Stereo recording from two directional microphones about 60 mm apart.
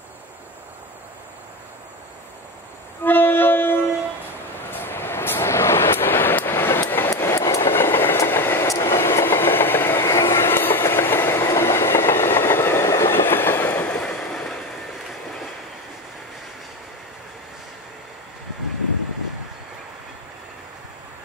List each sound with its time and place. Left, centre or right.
3.0 s music: left
4.6 s vehicle: left
7.2 s train: left
8.3 s vehicle: left
8.6 s train: left
13.8 s train: centre
14.3 s vehicle: centre